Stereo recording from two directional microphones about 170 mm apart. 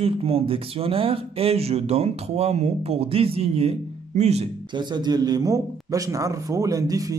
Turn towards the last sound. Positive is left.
turn(degrees=-20)  # may be behind; listen again after turning